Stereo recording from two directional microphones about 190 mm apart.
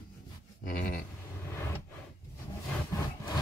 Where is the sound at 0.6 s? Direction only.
45° left (ahead or behind).